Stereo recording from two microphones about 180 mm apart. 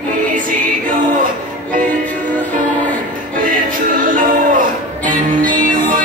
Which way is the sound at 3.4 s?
50° right (ahead or behind).